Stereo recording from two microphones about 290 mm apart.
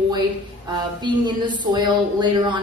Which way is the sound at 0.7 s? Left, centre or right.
Centre.